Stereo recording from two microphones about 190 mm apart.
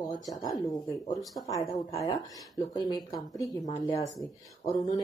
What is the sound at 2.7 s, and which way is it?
Speech, 20° left (ahead or behind).